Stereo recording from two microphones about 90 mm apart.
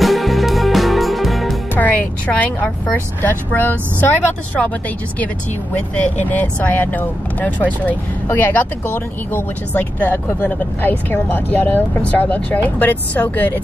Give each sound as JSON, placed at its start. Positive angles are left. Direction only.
{"t": 0.0, "sound": "music", "side_deg": 0}
{"t": 1.8, "sound": "a sound", "side_deg": 15}
{"t": 3.2, "sound": "speech", "side_deg": 20}
{"t": 5.8, "sound": "speech", "side_deg": 20}